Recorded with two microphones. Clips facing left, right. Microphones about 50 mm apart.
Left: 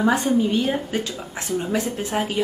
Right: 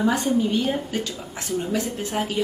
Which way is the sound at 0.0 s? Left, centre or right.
Left.